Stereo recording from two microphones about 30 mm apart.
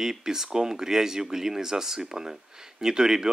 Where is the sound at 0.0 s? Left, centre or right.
Centre.